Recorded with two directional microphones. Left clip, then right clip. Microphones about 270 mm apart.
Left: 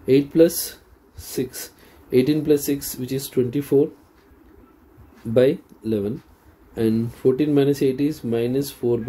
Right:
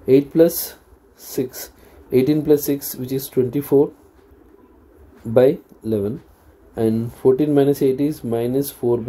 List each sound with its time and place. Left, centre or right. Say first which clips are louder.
0.0 s speech: right 2 dB; centre
5.3 s speech: right 3 dB; centre